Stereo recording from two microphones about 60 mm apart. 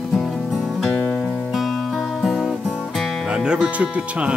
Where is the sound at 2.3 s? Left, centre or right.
Centre.